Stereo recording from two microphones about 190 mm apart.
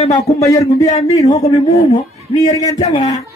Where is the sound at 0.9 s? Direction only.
35° left (ahead or behind).